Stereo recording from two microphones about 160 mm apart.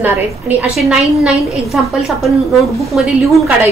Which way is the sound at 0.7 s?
Centre (ahead or behind).